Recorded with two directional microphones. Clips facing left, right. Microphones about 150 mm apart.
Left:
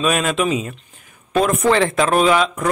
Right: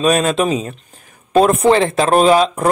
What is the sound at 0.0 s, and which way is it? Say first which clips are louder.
Speech: right 4 dB; 35° right (ahead or behind).